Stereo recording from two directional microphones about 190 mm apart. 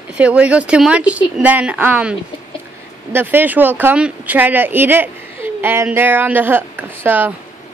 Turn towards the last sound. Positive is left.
turn(degrees=-10)  # may be behind; listen again after turning